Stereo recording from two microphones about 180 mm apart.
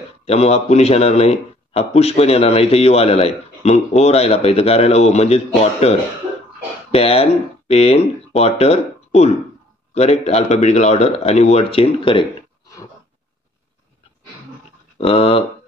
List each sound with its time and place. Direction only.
0.2 s speech: 35° left (ahead or behind)
15.0 s speech: 30° left (ahead or behind)